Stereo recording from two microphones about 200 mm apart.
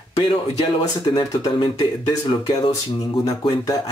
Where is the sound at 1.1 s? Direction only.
20° left (ahead or behind).